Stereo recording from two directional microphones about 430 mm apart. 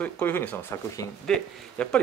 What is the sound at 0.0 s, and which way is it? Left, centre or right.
Speech, centre.